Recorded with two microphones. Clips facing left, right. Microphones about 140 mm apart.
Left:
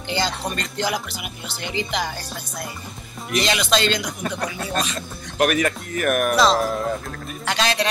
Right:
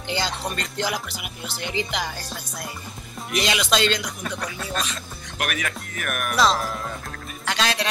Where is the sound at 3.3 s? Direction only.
5° right (ahead or behind).